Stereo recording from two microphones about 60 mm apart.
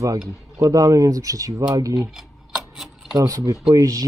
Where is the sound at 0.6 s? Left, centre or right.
Right.